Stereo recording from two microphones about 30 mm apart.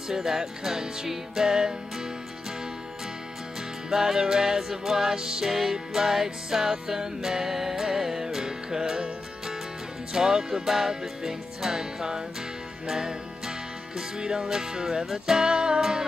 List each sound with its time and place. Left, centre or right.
0.1 s music: centre
3.9 s music: centre
5.4 s music: centre; by 15.8 s right